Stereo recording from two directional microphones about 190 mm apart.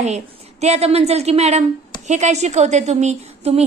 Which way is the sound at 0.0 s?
35° right (ahead or behind).